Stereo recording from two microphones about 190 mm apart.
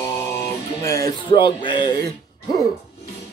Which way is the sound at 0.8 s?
15° left (ahead or behind).